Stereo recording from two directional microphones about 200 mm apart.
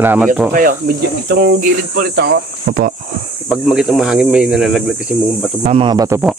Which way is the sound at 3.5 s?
Centre (ahead or behind).